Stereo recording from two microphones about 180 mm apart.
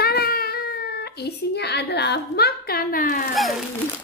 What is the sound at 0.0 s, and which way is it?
Baby cry, 60° left (ahead or behind).